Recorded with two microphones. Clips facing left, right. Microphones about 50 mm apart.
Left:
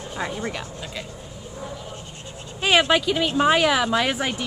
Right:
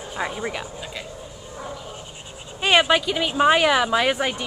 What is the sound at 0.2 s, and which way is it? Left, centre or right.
Speech, centre.